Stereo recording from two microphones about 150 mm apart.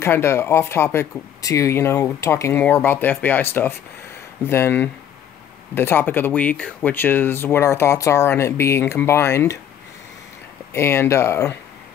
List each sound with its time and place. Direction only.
0.0 s speech: 15° left (ahead or behind)
10.7 s speech: 15° left (ahead or behind)